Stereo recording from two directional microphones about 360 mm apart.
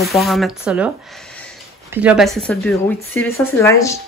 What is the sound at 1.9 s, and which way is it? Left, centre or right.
Speech, centre.